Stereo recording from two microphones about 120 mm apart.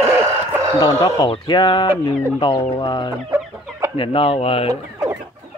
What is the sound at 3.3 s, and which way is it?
Chicken, 25° right (ahead or behind).